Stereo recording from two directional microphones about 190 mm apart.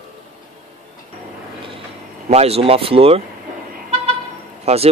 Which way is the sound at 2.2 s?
35° right (ahead or behind).